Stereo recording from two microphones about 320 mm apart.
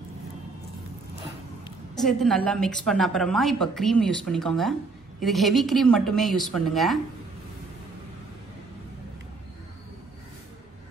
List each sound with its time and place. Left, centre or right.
2.0 s a woman's voice: centre